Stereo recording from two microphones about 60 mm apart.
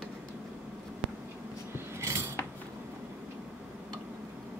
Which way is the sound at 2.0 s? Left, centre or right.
Right.